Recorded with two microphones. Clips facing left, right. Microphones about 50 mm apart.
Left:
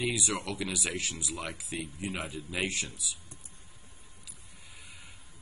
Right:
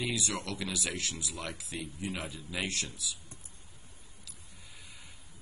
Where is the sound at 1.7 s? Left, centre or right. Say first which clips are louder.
Left 2 dB; left.